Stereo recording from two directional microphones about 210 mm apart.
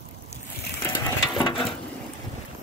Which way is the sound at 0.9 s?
25° left (ahead or behind).